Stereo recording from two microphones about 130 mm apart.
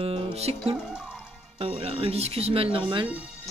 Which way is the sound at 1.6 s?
50° right (ahead or behind).